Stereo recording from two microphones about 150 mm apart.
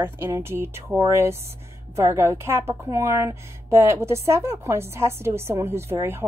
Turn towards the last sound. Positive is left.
turn(degrees=-20)  # may be behind; listen again after turning